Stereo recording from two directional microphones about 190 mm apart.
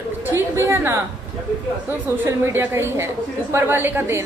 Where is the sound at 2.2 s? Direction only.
10° right (ahead or behind).